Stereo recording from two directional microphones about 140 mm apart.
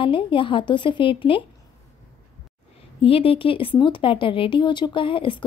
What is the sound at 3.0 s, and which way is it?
Speech, 40° left (ahead or behind).